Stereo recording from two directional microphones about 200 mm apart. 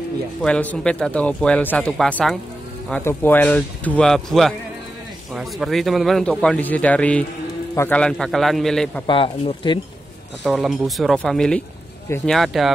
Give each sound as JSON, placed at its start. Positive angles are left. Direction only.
{"t": 0.4, "sound": "speech", "side_deg": 5}
{"t": 9.0, "sound": "speech", "side_deg": 25}
{"t": 10.4, "sound": "speech", "side_deg": 0}